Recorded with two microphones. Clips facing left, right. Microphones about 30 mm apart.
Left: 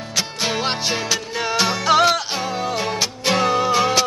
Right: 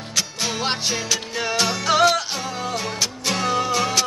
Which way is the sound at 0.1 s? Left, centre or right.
Centre.